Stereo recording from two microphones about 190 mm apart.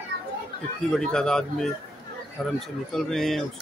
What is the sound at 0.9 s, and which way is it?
Speech, 5° left (ahead or behind).